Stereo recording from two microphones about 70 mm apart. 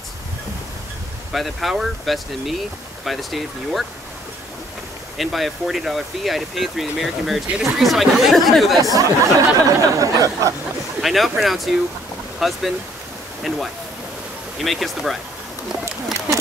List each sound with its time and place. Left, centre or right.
1.3 s speech: centre
5.1 s speech: centre
8.8 s speech: right
11.0 s speech: centre
14.6 s speech: centre